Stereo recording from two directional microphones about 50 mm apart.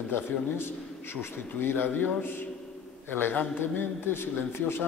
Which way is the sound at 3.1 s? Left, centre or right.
Left.